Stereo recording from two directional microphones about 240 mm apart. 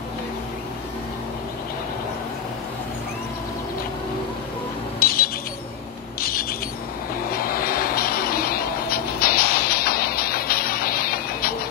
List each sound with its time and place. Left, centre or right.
5.0 s alarm: left
7.2 s music: left